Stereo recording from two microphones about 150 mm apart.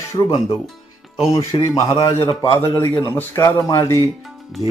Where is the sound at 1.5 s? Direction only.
30° left (ahead or behind).